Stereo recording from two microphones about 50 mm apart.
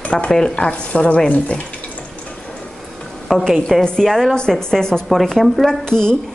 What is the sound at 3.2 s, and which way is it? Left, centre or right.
A woman's voice, centre.